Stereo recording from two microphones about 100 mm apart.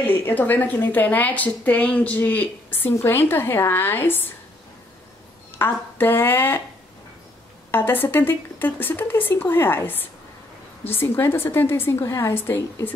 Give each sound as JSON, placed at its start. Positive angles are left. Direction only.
{"t": 0.0, "sound": "a woman's voice", "side_deg": 20}
{"t": 5.6, "sound": "a woman's voice", "side_deg": 20}
{"t": 7.7, "sound": "a woman's voice", "side_deg": 20}